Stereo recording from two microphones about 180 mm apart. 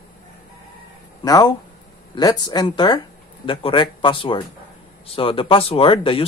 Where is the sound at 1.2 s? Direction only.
20° left (ahead or behind).